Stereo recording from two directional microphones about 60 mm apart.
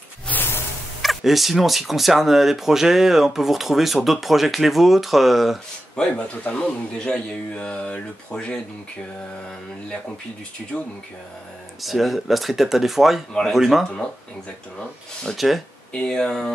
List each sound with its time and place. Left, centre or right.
0.3 s a sound: left
1.0 s speech: centre
5.9 s a man's voice: centre
10.7 s a man's voice: centre
11.8 s speech: centre
15.3 s speech: centre
15.9 s a man's voice: centre